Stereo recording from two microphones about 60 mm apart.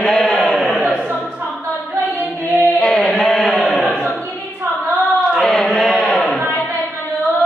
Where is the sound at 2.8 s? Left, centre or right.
Centre.